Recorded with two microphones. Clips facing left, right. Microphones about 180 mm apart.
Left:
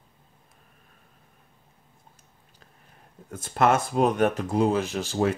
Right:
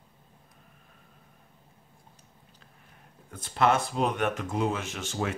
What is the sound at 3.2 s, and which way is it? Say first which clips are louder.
Speech: left 3 dB; 45° left (ahead or behind).